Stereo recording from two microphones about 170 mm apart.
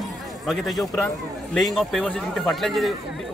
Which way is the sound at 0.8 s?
20° left (ahead or behind).